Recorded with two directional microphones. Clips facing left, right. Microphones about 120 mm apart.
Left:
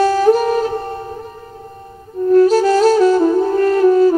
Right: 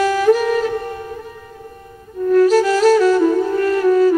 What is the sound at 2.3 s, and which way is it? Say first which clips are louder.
Music: left 2 dB; 30° left (ahead or behind).